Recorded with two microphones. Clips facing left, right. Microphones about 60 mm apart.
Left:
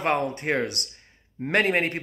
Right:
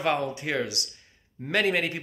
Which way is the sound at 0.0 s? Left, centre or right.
Left.